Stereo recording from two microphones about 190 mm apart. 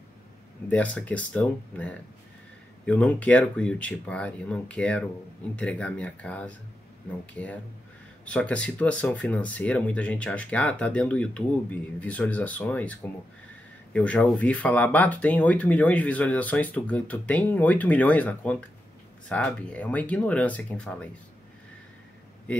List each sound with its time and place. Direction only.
0.7 s speech: 5° left (ahead or behind)
8.3 s speech: 5° left (ahead or behind)